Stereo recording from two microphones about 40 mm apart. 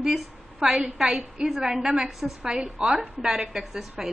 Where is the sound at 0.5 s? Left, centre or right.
Centre.